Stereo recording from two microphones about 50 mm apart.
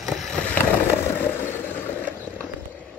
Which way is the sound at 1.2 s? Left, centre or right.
Left.